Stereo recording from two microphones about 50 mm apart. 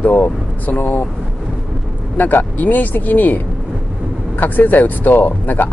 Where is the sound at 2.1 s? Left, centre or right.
Left.